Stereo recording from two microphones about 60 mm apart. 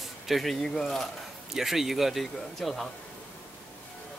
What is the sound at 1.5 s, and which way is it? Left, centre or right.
Speech, centre.